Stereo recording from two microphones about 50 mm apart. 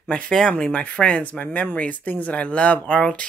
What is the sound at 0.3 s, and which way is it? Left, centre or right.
Speech, centre.